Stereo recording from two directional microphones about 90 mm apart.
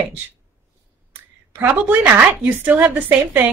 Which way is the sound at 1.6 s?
20° right (ahead or behind).